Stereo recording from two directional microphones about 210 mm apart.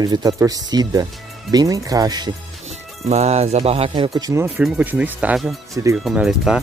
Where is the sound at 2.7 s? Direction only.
30° right (ahead or behind).